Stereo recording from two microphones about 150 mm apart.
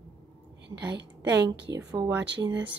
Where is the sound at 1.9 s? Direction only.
20° right (ahead or behind).